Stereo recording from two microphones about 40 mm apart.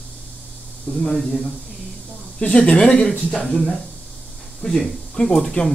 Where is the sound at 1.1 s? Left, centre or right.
Centre.